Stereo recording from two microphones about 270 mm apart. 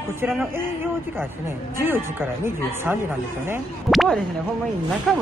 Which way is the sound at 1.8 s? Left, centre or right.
Centre.